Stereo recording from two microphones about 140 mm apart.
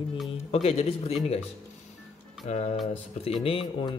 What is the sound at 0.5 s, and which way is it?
Speech, 50° left (ahead or behind).